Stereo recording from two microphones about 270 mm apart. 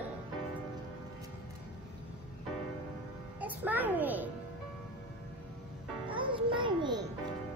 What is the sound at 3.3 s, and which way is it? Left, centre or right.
Music, centre.